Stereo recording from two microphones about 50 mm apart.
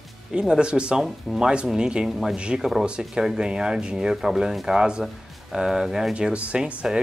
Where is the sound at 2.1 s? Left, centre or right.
Centre.